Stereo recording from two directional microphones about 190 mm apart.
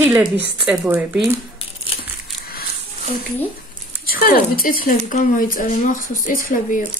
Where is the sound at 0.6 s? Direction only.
5° right (ahead or behind).